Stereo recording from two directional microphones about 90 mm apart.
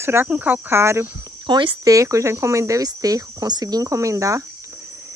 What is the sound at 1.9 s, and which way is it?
Speech, 35° right (ahead or behind).